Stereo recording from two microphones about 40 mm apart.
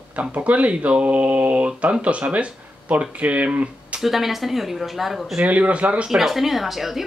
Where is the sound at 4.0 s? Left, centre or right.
Centre.